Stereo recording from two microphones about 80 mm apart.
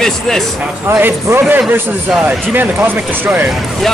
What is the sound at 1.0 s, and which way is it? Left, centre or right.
A man's voice, right.